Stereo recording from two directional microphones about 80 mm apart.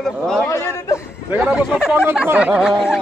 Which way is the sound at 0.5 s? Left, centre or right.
Left.